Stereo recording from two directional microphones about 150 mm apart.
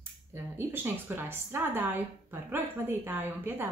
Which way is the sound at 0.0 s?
15° right (ahead or behind).